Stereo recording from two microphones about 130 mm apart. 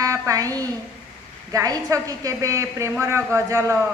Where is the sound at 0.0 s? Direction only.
25° right (ahead or behind).